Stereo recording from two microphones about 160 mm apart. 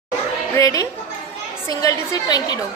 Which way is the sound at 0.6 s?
20° left (ahead or behind).